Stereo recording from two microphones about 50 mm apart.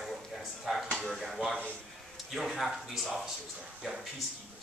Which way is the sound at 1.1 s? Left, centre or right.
Centre.